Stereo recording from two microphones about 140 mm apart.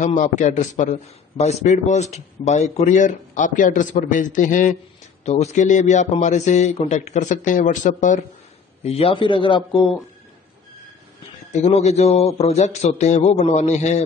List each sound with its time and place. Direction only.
0.0 s speech: 60° left (ahead or behind)
5.2 s speech: 50° left (ahead or behind)
8.8 s a man's voice: 45° left (ahead or behind)
11.5 s speech: 50° left (ahead or behind)